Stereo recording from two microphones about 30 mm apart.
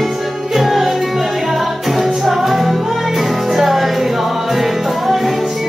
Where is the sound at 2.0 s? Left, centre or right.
Centre.